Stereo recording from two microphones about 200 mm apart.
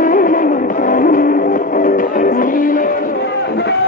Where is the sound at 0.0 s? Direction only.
45° left (ahead or behind).